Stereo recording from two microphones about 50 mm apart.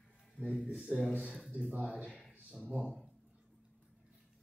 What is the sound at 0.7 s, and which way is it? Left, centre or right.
Speech, centre.